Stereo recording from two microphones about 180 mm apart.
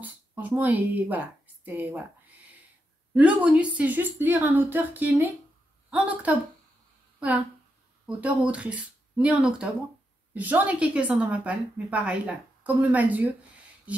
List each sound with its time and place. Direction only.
0.0 s speech: 10° right (ahead or behind)
3.2 s a woman's voice: 10° right (ahead or behind)